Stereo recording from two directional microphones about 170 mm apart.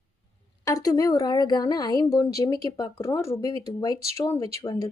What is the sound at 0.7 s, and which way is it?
A woman's voice, 20° left (ahead or behind).